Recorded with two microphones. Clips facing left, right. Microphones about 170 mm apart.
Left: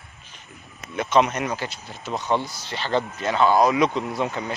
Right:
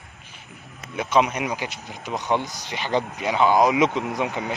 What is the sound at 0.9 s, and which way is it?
Speech, 10° right (ahead or behind).